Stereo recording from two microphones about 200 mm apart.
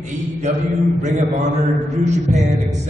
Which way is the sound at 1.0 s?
35° right (ahead or behind).